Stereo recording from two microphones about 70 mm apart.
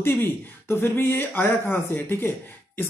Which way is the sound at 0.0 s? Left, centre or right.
Left.